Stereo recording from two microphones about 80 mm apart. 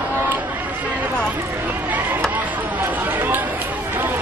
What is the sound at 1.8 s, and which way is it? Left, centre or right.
Chop, right.